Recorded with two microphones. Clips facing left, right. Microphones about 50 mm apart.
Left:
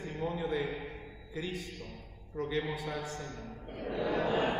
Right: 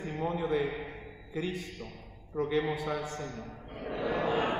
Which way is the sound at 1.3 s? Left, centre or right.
Right.